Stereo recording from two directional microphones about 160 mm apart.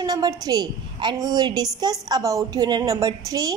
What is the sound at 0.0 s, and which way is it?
A woman's voice, 25° right (ahead or behind).